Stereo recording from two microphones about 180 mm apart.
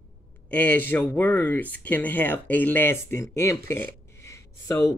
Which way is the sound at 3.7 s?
15° left (ahead or behind).